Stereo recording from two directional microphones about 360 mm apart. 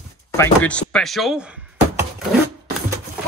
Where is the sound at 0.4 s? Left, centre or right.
Centre.